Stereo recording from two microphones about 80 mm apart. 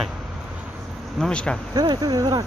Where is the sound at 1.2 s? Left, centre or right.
Centre.